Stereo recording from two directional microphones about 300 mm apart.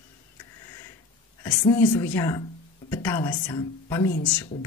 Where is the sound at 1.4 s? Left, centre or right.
Centre.